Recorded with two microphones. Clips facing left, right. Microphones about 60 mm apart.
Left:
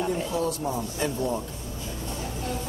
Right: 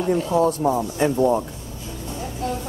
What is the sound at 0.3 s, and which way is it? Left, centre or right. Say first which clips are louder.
Speech: right 9 dB; right.